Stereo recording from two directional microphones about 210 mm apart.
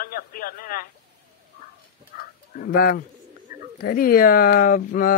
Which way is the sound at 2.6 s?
45° left (ahead or behind).